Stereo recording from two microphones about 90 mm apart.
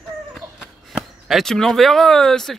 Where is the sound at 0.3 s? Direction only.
5° right (ahead or behind).